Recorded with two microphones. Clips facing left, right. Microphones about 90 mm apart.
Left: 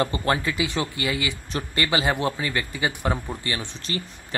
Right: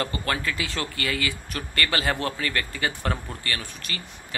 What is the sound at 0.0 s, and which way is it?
Speech, 25° left (ahead or behind).